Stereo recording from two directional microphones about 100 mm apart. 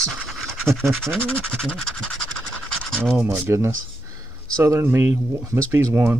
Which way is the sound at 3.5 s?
25° right (ahead or behind).